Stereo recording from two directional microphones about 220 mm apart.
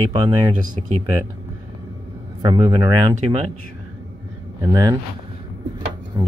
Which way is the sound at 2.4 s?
20° right (ahead or behind).